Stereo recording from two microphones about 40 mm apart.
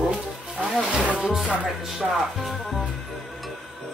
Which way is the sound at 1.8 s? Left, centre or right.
Centre.